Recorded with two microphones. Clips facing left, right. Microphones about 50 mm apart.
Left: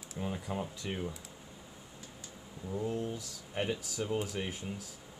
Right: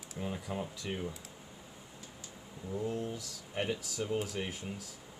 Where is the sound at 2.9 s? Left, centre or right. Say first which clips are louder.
Left 1 dB; left.